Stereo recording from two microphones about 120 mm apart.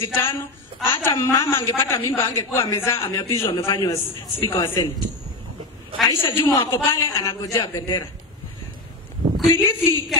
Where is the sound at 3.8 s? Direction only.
45° left (ahead or behind).